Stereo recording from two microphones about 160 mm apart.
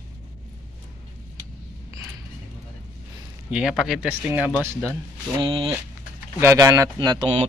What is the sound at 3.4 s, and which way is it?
Speech, 5° right (ahead or behind).